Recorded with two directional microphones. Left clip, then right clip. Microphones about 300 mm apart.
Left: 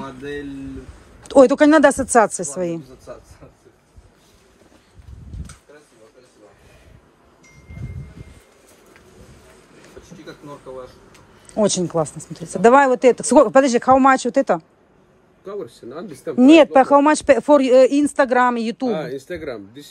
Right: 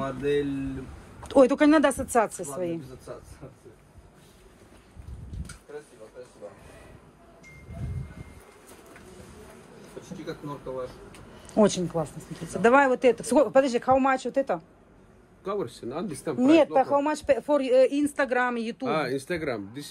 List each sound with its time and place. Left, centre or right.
1.3 s speech: centre
11.5 s speech: centre
15.4 s speech: centre
16.3 s speech: left
18.9 s speech: centre